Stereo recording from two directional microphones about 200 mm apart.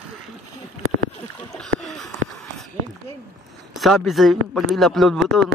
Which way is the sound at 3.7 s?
Centre (ahead or behind).